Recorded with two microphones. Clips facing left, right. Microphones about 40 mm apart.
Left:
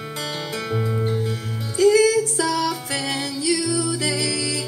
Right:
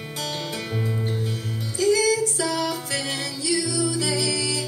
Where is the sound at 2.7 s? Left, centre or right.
Left.